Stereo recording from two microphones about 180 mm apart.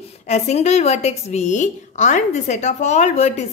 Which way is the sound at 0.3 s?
40° left (ahead or behind).